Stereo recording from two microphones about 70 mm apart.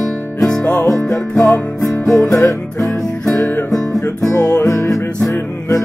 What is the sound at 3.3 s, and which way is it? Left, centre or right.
Music, left.